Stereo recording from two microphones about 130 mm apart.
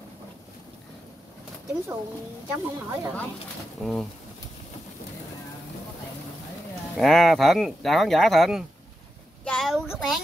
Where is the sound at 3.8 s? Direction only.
Centre (ahead or behind).